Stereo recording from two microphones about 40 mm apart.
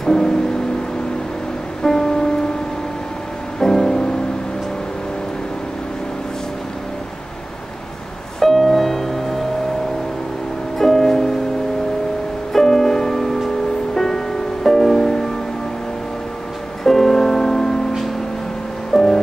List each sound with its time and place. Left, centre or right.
0.0 s music: centre
1.8 s music: centre
3.5 s music: centre
8.4 s music: centre
10.8 s music: centre
12.5 s music: centre
16.8 s music: centre
18.9 s music: centre